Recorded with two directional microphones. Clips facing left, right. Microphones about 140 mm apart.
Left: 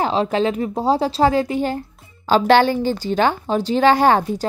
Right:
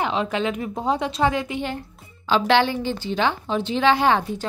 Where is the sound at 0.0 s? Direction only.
35° left (ahead or behind).